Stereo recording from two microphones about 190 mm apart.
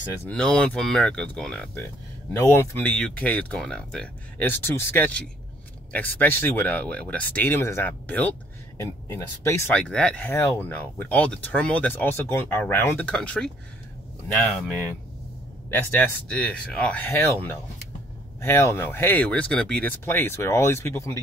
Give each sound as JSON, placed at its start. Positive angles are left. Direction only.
{"t": 0.3, "sound": "speech", "side_deg": 5}